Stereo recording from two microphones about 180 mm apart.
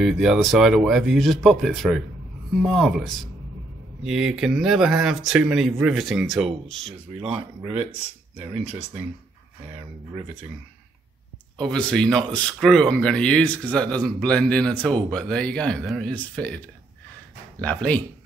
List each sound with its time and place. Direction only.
0.0 s speech: centre (ahead or behind)
7.3 s speech: 30° right (ahead or behind)
8.4 s speech: 5° right (ahead or behind)
11.6 s speech: 5° left (ahead or behind)